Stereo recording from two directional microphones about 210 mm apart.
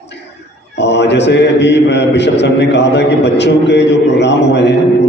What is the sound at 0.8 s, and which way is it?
A man's voice, 55° left (ahead or behind).